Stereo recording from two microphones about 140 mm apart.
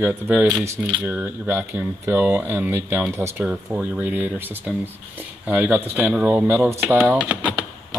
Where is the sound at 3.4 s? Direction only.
10° right (ahead or behind).